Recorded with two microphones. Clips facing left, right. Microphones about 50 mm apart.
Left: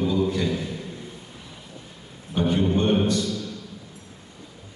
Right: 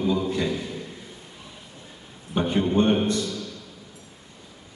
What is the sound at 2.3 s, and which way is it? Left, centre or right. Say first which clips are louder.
Speech: even; right.